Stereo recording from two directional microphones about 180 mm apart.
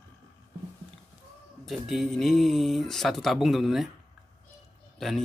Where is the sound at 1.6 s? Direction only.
Centre (ahead or behind).